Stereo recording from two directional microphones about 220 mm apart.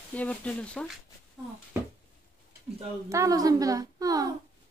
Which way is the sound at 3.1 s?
15° right (ahead or behind).